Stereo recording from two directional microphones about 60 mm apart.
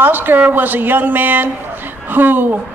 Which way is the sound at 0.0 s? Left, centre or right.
Right.